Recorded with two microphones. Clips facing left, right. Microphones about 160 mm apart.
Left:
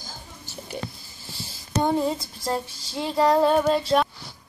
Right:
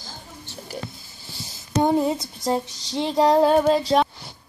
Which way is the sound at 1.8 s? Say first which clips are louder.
Right 3 dB; 20° right (ahead or behind).